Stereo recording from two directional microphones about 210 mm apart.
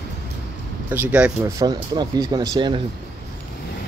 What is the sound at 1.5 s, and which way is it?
Speech, 20° right (ahead or behind).